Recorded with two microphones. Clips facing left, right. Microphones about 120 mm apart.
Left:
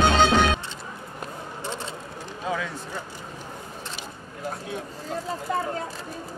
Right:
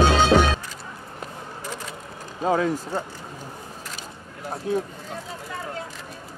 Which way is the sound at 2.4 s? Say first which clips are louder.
Right 8 dB; 40° right (ahead or behind).